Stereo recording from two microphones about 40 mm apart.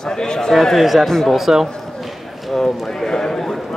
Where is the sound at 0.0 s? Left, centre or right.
Centre.